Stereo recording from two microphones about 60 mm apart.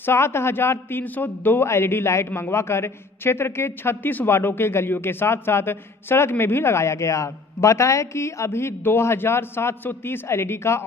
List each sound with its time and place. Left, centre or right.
0.0 s a man's voice: left
1.7 s a man's voice: left